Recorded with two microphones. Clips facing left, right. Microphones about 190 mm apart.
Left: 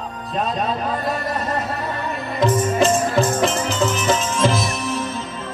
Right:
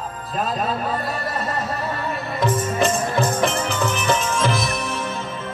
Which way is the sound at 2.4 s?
60° right (ahead or behind).